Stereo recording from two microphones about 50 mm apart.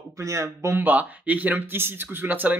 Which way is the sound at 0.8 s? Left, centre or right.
Right.